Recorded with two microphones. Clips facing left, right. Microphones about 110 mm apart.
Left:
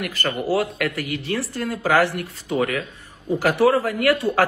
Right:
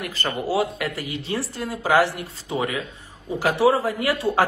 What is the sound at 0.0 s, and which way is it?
Speech, 25° right (ahead or behind).